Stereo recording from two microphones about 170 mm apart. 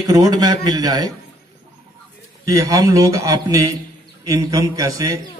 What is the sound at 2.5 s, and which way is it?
A man's voice, 20° right (ahead or behind).